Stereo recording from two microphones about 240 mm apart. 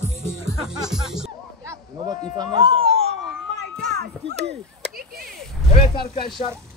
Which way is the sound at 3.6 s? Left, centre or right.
Right.